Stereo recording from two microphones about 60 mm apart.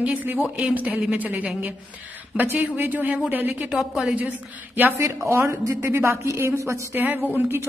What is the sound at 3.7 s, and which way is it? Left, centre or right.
Speech, centre.